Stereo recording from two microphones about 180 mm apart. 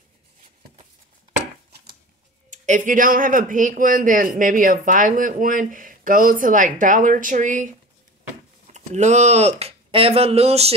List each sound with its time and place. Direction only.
2.5 s speech: 45° right (ahead or behind)